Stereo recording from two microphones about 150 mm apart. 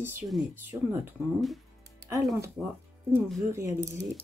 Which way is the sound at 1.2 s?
Centre (ahead or behind).